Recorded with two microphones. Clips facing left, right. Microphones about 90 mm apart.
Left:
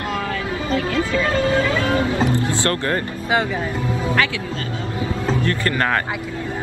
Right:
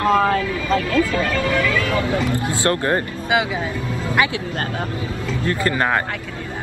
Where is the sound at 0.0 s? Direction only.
45° right (ahead or behind).